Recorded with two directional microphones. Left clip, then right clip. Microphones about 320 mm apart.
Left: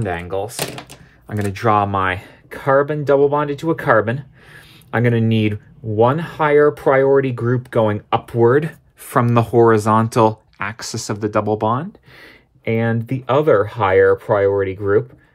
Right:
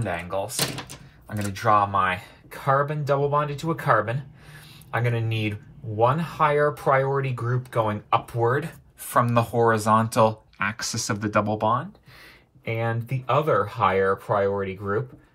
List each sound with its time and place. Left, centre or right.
1.3 s speech: left